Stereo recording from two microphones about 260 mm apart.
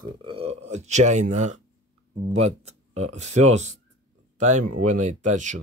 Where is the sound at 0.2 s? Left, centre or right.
Right.